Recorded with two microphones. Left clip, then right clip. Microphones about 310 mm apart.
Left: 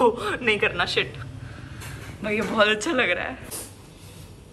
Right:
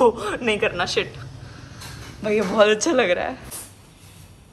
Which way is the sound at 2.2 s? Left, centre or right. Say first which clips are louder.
Right 4 dB; centre.